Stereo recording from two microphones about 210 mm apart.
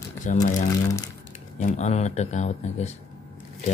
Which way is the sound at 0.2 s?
35° left (ahead or behind).